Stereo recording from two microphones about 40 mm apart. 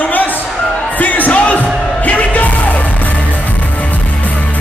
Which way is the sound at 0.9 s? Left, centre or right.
Left.